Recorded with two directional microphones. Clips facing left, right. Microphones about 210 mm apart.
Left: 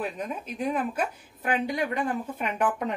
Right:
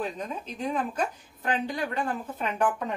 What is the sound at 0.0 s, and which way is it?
A woman's voice, 10° left (ahead or behind).